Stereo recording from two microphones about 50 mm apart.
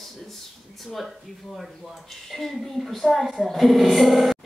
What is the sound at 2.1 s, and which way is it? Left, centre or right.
Speech, centre.